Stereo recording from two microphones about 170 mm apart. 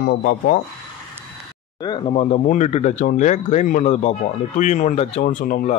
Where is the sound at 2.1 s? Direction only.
40° left (ahead or behind).